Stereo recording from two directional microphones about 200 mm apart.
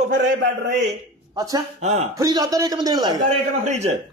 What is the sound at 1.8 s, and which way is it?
Speech, 35° right (ahead or behind).